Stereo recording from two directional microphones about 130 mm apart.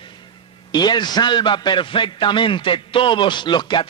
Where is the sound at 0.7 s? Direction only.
35° left (ahead or behind).